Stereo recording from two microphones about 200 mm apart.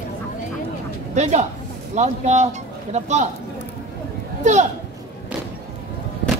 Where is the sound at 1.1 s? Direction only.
35° right (ahead or behind).